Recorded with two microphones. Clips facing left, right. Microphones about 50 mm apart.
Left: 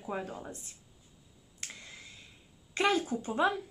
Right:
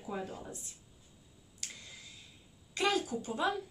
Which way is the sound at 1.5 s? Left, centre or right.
Left.